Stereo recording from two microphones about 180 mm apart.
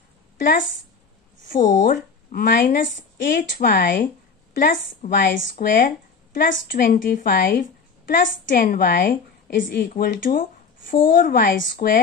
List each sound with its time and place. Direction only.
0.4 s a woman's voice: 50° left (ahead or behind)
5.2 s a woman's voice: 60° left (ahead or behind)